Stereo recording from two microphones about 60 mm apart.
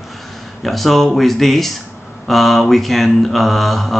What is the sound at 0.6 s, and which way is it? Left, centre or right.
Speech, centre.